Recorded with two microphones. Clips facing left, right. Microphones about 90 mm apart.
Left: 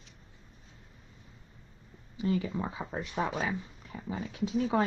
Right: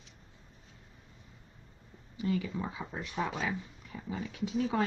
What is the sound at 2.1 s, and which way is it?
Speech, 30° left (ahead or behind).